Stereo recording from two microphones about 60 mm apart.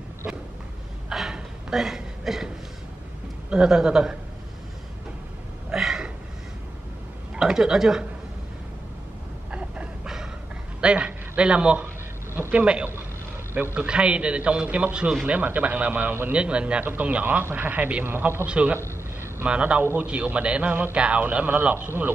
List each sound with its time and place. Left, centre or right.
1.3 s a sound: centre
3.4 s a man's voice: centre
5.7 s a sound: centre
7.3 s a man's voice: centre
9.5 s a sound: centre
10.8 s a man's voice: centre
18.0 s a man's voice: right
18.5 s a man's voice: right
19.8 s a man's voice: right
20.1 s a man's voice: right